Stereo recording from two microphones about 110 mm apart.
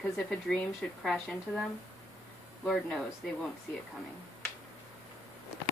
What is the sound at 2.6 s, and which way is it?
Speech, 5° left (ahead or behind).